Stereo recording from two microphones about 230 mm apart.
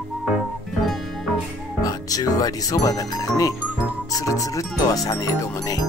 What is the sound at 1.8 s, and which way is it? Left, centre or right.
Speech, centre.